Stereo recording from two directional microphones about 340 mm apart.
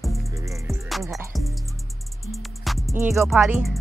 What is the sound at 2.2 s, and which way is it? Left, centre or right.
Music, centre.